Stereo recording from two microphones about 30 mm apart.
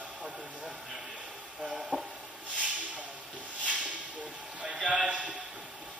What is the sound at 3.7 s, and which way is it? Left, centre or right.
Hiss, right.